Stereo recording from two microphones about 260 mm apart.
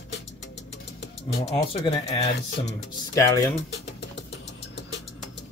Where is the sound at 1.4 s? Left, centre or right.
Left.